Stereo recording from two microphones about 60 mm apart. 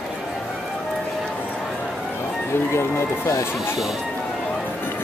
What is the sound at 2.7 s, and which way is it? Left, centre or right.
Speech, left.